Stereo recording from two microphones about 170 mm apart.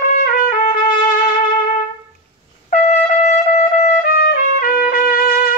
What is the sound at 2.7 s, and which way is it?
Trumpet, 50° left (ahead or behind).